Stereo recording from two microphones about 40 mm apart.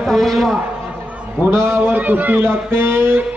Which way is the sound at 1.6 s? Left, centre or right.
Right.